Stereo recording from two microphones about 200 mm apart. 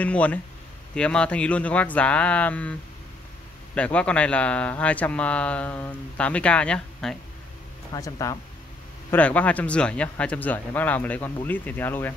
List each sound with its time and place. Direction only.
0.0 s speech: 5° left (ahead or behind)
3.7 s speech: 5° left (ahead or behind)
7.9 s speech: 15° left (ahead or behind)